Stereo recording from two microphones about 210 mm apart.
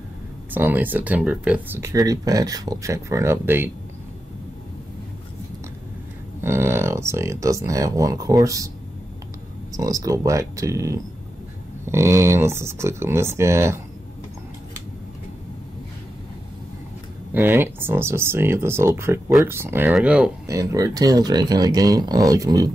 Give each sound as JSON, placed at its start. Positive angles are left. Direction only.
{"t": 0.5, "sound": "speech", "side_deg": -10}
{"t": 6.4, "sound": "speech", "side_deg": -10}
{"t": 9.7, "sound": "speech", "side_deg": -15}
{"t": 17.3, "sound": "speech", "side_deg": -10}